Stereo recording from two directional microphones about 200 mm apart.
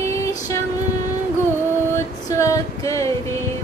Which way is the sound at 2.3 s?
15° left (ahead or behind).